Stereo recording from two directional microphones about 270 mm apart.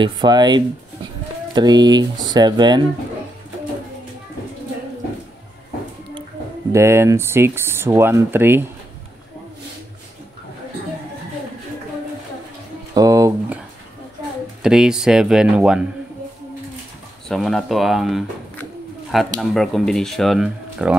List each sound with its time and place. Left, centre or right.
0.0 s speech: centre
6.7 s speech: centre
12.9 s a sound: centre
14.6 s speech: centre
17.3 s speech: centre